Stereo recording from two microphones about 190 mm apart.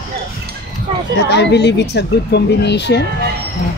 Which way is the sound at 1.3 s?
65° left (ahead or behind).